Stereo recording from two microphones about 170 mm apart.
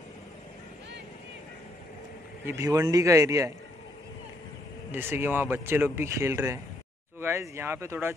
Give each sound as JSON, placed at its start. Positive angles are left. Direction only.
{"t": 2.4, "sound": "a man's voice", "side_deg": -20}
{"t": 4.9, "sound": "a man's voice", "side_deg": -10}